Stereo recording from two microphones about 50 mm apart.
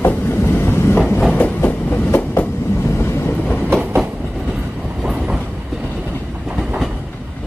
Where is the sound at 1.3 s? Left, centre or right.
Left.